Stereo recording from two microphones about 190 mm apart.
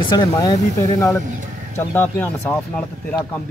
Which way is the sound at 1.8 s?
10° left (ahead or behind).